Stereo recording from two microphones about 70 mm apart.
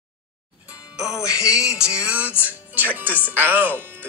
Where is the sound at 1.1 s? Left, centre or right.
Left.